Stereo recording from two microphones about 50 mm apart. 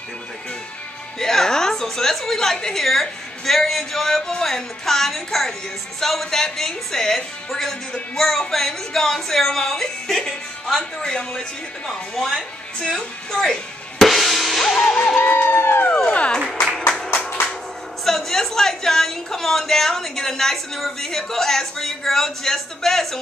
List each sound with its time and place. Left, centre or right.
1.2 s a woman's voice: centre
12.9 s music: centre
15.2 s crowd: left
16.3 s music: centre
18.0 s a woman's voice: centre